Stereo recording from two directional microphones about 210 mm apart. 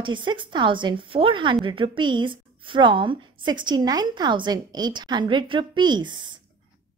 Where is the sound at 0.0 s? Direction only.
20° right (ahead or behind).